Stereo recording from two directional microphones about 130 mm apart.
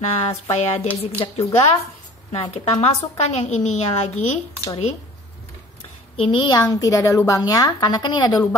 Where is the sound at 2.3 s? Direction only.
50° left (ahead or behind).